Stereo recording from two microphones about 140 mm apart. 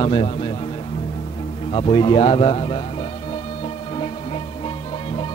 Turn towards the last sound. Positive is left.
turn(degrees=40)  # may be behind; listen again after turning